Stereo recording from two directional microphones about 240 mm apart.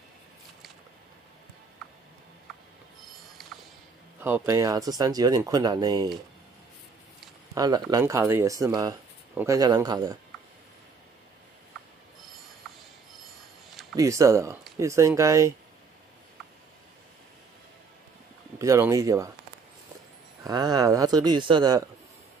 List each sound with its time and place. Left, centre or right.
3.4 s music: centre
4.2 s speech: centre
7.5 s speech: centre
13.9 s speech: centre
18.6 s speech: centre
20.4 s speech: centre